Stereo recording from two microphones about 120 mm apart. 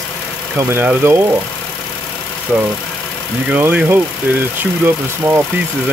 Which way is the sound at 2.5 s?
Centre (ahead or behind).